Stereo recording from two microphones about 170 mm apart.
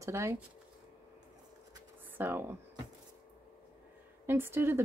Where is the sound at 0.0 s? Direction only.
15° right (ahead or behind).